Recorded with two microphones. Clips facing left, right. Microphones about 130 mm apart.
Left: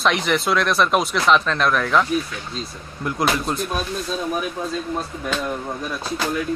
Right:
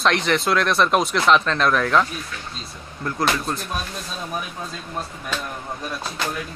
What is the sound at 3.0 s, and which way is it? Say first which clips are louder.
Speech: left 1 dB; 15° left (ahead or behind).